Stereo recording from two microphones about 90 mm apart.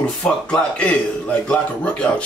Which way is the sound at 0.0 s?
10° left (ahead or behind).